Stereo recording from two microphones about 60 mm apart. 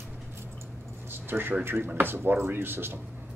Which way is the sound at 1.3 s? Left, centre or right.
Right.